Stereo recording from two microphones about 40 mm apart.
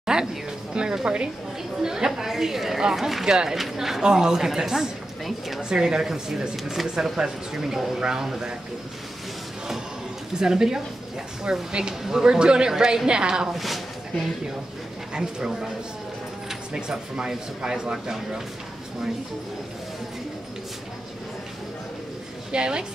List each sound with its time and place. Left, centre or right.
0.0 s a sound: centre
0.7 s a woman's voice: right
1.8 s a woman's voice: centre
5.6 s a woman's voice: centre
6.5 s a woman's voice: centre
10.4 s a woman's voice: centre
13.5 s speech: centre
15.1 s a woman's voice: centre
22.5 s a woman's voice: right